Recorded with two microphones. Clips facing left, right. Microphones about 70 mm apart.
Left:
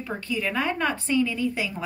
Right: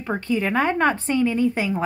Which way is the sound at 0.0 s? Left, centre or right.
Right.